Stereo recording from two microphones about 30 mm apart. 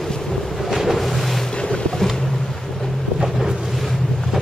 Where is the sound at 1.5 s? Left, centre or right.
Left.